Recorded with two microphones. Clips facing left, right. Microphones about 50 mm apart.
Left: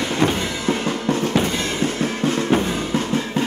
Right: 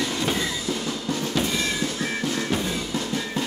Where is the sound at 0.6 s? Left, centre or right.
Left.